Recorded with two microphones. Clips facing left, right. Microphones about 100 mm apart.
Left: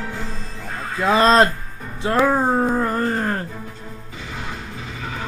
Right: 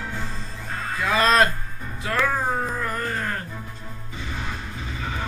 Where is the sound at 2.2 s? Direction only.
30° left (ahead or behind).